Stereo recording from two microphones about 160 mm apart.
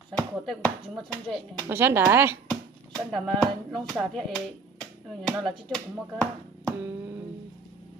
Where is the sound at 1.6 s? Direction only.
15° right (ahead or behind).